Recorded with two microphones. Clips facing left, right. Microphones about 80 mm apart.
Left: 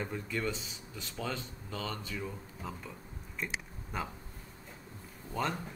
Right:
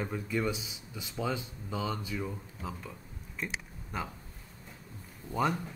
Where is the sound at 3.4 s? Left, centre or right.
Centre.